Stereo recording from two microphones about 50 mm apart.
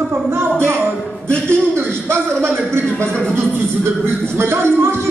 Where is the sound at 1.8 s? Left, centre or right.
Right.